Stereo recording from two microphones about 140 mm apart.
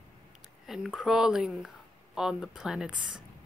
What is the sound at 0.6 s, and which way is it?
Speech, 5° right (ahead or behind).